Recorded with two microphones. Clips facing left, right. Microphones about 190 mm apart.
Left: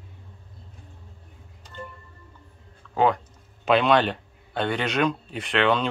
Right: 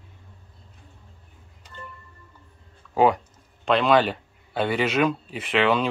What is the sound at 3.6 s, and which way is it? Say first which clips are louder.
Speech: even; centre (ahead or behind).